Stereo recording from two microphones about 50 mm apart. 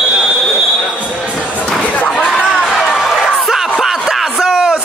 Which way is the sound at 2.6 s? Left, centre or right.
Centre.